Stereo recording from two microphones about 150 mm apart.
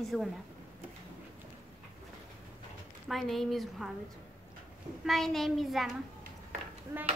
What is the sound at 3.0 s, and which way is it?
Speech, centre (ahead or behind).